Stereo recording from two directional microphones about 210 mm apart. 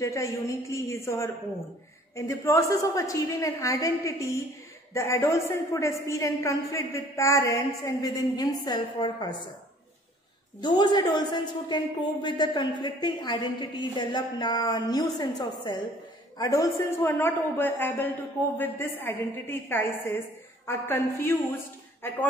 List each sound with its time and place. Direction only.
0.0 s a woman's voice: 15° left (ahead or behind)
10.6 s a woman's voice: 20° left (ahead or behind)